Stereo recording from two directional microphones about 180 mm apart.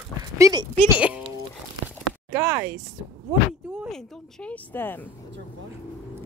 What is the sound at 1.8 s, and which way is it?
Chop, 10° right (ahead or behind).